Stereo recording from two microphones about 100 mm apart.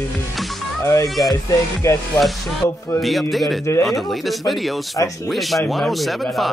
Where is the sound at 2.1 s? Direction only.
Centre (ahead or behind).